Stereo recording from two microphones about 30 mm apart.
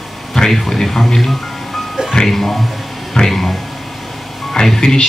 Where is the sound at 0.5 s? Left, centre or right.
Centre.